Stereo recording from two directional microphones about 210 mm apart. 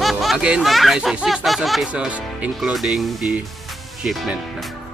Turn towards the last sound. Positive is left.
turn(degrees=0)  # may be behind; listen again after turning